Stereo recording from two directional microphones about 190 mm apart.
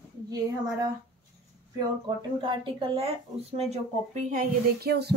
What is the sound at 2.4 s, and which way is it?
Speech, 25° right (ahead or behind).